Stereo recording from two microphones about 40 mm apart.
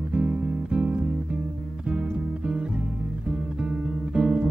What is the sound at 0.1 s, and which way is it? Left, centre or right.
Music, right.